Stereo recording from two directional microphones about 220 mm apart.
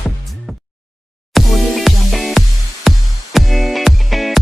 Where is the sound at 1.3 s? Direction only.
Centre (ahead or behind).